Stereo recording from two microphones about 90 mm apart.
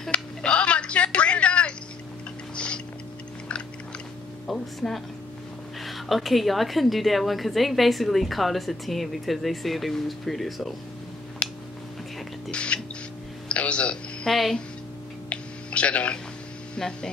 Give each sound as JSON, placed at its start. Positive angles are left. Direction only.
{"t": 0.1, "sound": "a sound", "side_deg": 15}
{"t": 2.5, "sound": "tick-tock", "side_deg": 10}
{"t": 4.5, "sound": "a woman's voice", "side_deg": 0}
{"t": 11.4, "sound": "a sound", "side_deg": 15}
{"t": 12.4, "sound": "music", "side_deg": 10}
{"t": 14.3, "sound": "a woman's voice", "side_deg": 0}
{"t": 15.2, "sound": "music", "side_deg": 15}
{"t": 16.7, "sound": "speech", "side_deg": 10}